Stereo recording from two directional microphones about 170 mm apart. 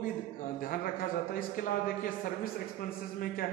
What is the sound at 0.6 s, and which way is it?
Speech, 55° left (ahead or behind).